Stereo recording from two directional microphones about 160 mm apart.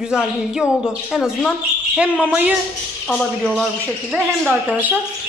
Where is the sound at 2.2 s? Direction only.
10° right (ahead or behind).